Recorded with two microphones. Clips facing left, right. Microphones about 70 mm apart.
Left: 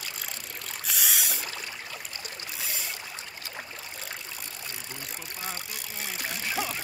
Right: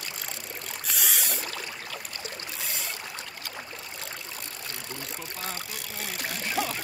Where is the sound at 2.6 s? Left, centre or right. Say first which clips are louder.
Even; centre.